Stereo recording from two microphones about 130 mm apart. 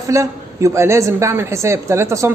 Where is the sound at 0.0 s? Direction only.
25° right (ahead or behind).